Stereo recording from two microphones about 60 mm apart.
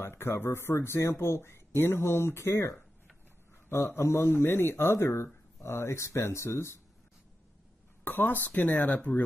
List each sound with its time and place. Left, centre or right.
0.0 s speech: left
3.9 s speech: left
8.0 s speech: left